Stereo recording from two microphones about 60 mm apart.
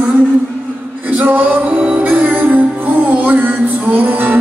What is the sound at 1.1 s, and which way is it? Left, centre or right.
Music, right.